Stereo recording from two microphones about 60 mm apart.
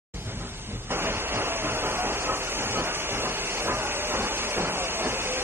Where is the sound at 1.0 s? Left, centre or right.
Right.